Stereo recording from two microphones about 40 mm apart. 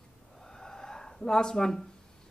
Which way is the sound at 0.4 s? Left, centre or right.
Centre.